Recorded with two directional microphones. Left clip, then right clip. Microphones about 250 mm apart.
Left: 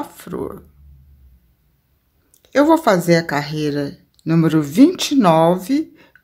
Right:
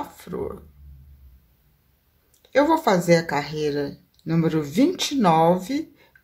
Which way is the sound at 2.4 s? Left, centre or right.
Left.